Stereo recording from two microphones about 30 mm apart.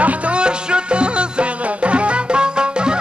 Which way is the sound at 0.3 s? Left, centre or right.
Right.